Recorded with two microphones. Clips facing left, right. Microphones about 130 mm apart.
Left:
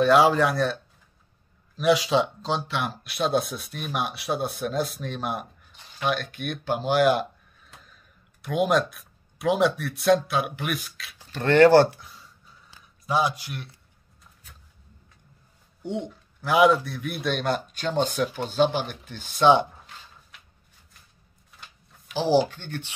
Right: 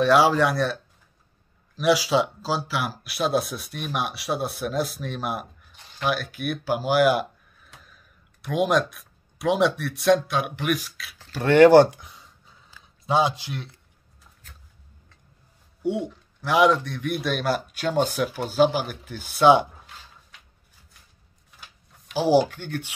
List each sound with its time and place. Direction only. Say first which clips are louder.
0.0 s speech: even; centre (ahead or behind)
1.8 s speech: even; centre (ahead or behind)
11.3 s speech: right 2 dB; 10° right (ahead or behind)
15.8 s speech: right 5 dB; 10° right (ahead or behind)
16.1 s speech: even; centre (ahead or behind)
22.1 s speech: right 2 dB; 10° right (ahead or behind)